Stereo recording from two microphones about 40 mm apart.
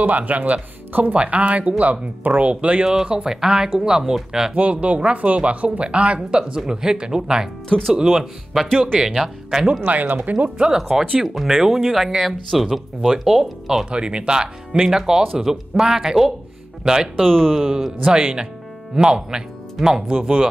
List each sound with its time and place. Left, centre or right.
0.0 s speech: right
2.4 s speech: right
2.8 s speech: right
4.6 s speech: right; by 9.7 s centre
9.8 s speech: right
10.8 s speech: centre
13.8 s speech: right
17.2 s speech: centre
17.6 s speech: centre
18.1 s speech: right